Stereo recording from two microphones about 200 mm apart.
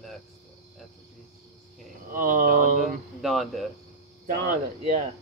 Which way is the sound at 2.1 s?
40° right (ahead or behind).